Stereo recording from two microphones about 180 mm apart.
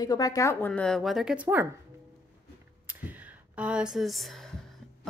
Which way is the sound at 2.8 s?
10° right (ahead or behind).